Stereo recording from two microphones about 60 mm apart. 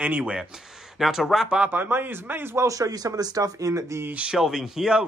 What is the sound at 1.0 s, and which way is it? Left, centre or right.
Speech, centre.